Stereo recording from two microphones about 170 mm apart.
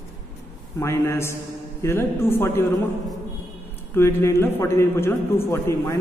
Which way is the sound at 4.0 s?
15° left (ahead or behind).